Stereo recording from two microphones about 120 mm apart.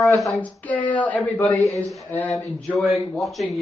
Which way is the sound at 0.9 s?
15° left (ahead or behind).